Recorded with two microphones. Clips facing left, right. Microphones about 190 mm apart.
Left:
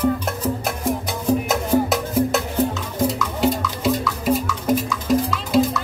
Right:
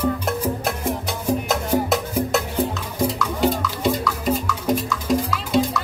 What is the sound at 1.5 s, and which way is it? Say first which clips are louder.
Music: left 2 dB; centre (ahead or behind).